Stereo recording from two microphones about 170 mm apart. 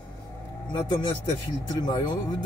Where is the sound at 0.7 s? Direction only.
25° left (ahead or behind).